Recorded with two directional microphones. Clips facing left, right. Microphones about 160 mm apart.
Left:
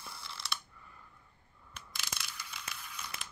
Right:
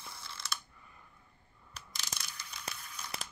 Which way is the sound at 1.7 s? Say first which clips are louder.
Left 1 dB; 40° right (ahead or behind).